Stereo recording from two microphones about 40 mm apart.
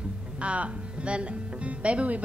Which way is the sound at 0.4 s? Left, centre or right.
Right.